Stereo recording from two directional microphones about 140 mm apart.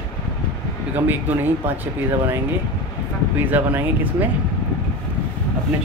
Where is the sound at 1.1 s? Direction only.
15° right (ahead or behind).